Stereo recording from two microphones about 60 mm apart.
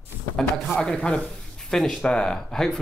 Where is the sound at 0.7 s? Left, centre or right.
Centre.